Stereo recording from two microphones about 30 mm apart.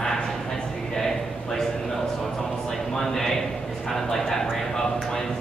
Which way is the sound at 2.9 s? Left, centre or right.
Centre.